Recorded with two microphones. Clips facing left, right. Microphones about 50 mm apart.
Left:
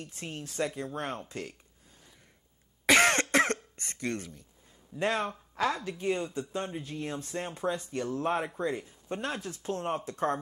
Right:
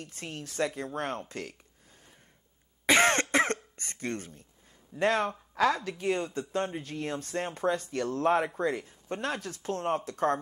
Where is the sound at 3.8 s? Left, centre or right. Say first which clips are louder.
Left 1 dB; right.